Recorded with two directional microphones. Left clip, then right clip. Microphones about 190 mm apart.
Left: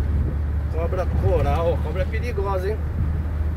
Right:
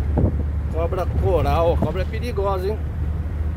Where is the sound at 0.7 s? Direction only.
30° right (ahead or behind).